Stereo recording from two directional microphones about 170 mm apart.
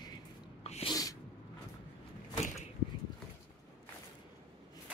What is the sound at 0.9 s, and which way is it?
Sneeze, 20° left (ahead or behind).